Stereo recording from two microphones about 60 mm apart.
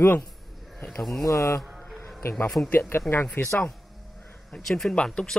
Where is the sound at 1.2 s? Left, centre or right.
Left.